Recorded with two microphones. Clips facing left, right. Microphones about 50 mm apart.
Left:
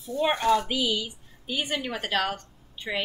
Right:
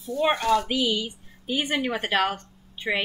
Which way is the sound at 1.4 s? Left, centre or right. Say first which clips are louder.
Right 4 dB; centre.